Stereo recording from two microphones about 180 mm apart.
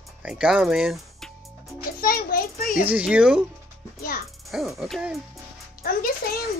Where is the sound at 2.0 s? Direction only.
55° left (ahead or behind).